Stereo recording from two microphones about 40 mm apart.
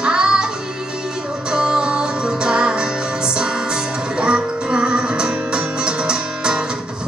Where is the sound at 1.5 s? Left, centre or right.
Right.